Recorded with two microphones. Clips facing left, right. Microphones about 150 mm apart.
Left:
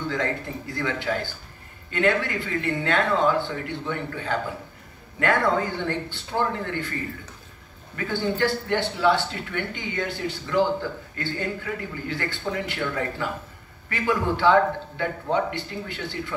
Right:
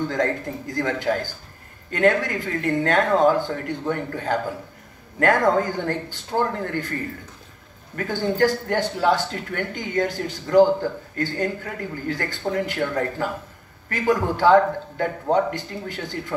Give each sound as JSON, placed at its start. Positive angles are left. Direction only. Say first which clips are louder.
{"t": 0.1, "sound": "speech", "louder": "right 4 dB", "side_deg": -45}
{"t": 7.9, "sound": "speech", "louder": "right 2 dB", "side_deg": -45}